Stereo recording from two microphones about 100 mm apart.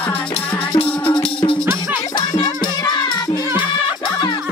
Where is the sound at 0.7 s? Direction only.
55° left (ahead or behind).